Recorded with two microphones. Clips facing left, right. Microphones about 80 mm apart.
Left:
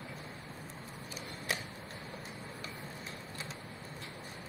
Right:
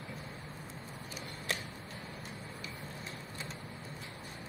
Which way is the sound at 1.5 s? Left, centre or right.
Centre.